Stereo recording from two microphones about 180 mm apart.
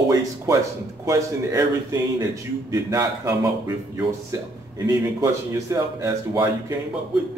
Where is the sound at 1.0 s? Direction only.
15° right (ahead or behind).